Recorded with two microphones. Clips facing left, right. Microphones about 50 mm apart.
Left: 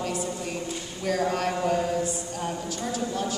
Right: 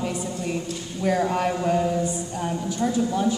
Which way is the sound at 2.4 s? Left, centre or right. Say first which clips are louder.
Right 6 dB; centre.